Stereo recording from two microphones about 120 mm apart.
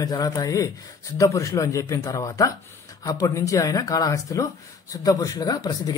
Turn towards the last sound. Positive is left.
turn(degrees=30)  # may be behind; listen again after turning